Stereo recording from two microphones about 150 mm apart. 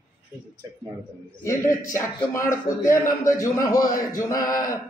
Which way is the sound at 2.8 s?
20° left (ahead or behind).